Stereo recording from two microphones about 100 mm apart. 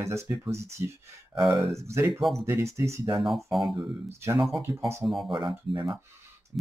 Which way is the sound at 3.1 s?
Centre (ahead or behind).